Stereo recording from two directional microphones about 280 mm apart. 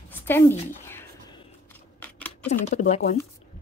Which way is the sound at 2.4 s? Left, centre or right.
Left.